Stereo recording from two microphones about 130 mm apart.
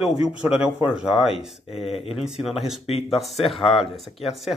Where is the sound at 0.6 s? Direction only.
10° right (ahead or behind).